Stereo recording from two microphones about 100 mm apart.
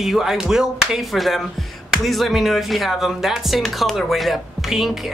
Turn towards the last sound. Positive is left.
turn(degrees=0)  # may be behind; listen again after turning